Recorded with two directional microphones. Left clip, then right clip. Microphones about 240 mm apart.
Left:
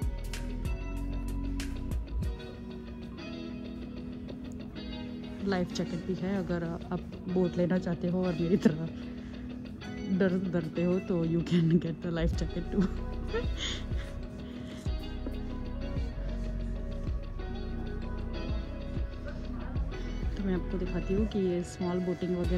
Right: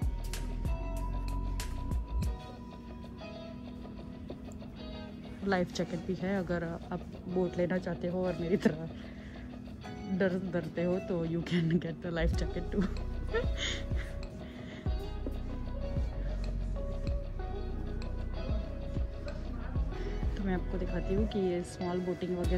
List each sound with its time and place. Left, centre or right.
1.6 s music: centre
5.5 s speech: centre
10.1 s speech: centre
20.3 s speech: centre